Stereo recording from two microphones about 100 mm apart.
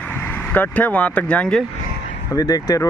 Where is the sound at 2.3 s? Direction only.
40° left (ahead or behind).